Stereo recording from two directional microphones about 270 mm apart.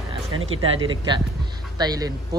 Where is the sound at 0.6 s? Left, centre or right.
Centre.